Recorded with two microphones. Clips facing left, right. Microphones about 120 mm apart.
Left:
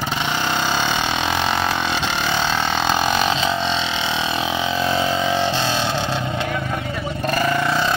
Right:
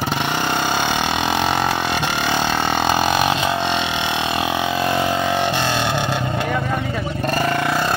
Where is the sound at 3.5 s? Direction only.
55° right (ahead or behind).